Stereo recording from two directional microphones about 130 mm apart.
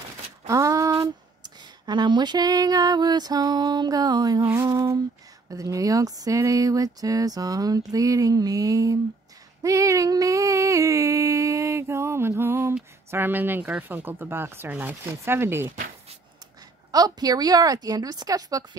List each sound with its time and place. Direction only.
0.5 s speech: 25° right (ahead or behind)
16.9 s speech: 30° right (ahead or behind)